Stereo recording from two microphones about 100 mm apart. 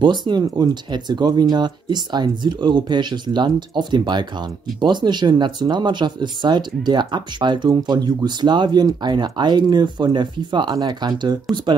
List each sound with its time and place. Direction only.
0.0 s speech: 50° right (ahead or behind)